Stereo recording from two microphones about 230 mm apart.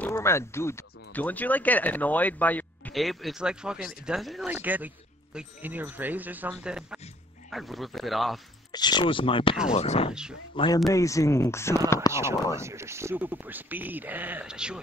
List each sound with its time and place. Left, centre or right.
0.0 s speech: centre
8.7 s speech: centre
12.1 s speech: centre